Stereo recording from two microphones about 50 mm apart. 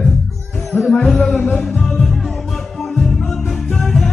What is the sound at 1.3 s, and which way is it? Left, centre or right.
Music, left.